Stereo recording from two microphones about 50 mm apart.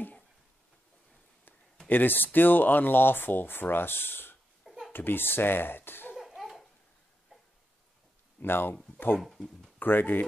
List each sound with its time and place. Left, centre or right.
1.9 s speech: left
4.6 s a sound: centre
4.9 s speech: left
6.1 s laughter: centre
8.4 s speech: left
9.8 s speech: left